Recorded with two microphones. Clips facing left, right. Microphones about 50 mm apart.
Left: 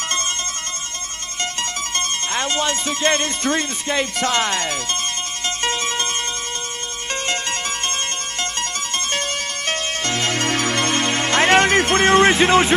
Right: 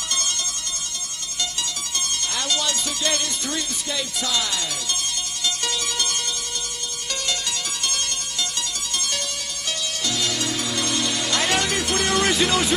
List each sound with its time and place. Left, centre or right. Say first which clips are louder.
1.4 s music: left 5 dB; left
7.2 s music: left 5 dB; left